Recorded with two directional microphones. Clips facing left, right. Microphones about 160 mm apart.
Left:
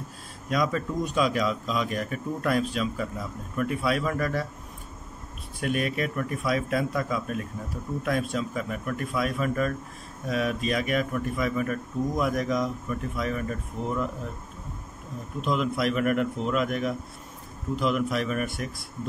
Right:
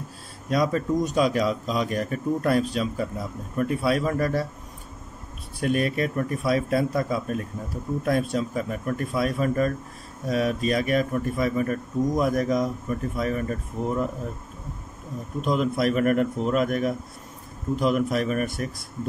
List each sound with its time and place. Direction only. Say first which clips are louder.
0.5 s a man's voice: right 4 dB; 40° right (ahead or behind)
5.6 s a man's voice: right 4 dB; 40° right (ahead or behind)
15.4 s a man's voice: right 3 dB; 40° right (ahead or behind)